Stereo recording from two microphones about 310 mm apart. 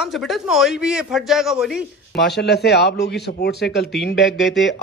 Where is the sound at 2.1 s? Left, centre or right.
Left.